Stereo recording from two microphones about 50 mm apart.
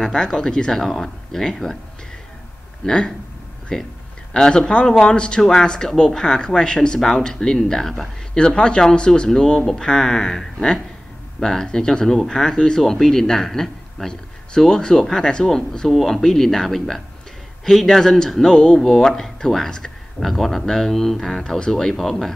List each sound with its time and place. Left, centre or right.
0.0 s speech: centre
2.8 s speech: centre